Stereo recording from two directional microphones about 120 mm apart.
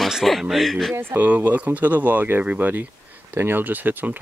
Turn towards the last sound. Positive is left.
turn(degrees=-15)  # may be behind; listen again after turning